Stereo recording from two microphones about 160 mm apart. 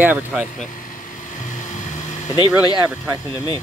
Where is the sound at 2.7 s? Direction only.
25° right (ahead or behind).